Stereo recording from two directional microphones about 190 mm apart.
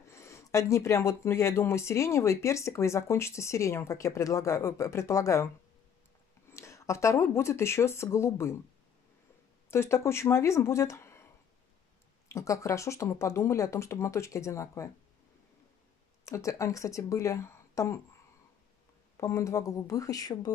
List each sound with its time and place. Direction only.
0.1 s speech: 15° left (ahead or behind)
6.5 s speech: 15° left (ahead or behind)
9.7 s speech: 15° left (ahead or behind)
12.3 s speech: 15° left (ahead or behind)
16.3 s speech: 15° left (ahead or behind)
19.1 s speech: 15° left (ahead or behind)